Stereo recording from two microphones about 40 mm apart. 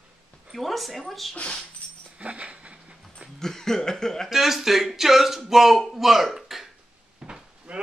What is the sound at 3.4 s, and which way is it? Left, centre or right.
Chuckle, centre.